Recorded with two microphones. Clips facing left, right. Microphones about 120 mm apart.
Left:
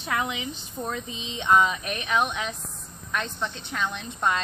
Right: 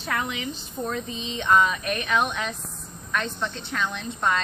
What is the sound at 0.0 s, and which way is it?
A woman's voice, 15° left (ahead or behind).